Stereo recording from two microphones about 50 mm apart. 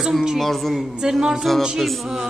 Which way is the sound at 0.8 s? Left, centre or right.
Centre.